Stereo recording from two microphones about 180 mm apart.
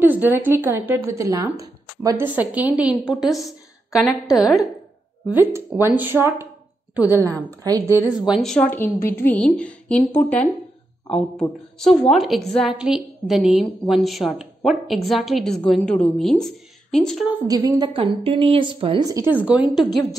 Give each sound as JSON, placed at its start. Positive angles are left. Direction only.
{"t": 0.0, "sound": "a woman's voice", "side_deg": -10}
{"t": 4.4, "sound": "a woman's voice", "side_deg": 0}
{"t": 5.3, "sound": "a woman's voice", "side_deg": -10}
{"t": 7.6, "sound": "a woman's voice", "side_deg": -20}
{"t": 8.3, "sound": "a woman's voice", "side_deg": 0}
{"t": 17.5, "sound": "a woman's voice", "side_deg": -20}